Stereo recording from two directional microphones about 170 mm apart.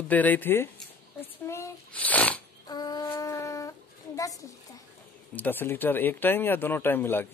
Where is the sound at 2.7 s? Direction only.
25° left (ahead or behind).